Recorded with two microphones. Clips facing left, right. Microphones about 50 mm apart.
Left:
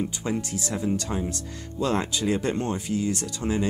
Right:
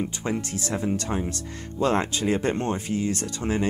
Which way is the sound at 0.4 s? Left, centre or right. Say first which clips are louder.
Right 1 dB; right.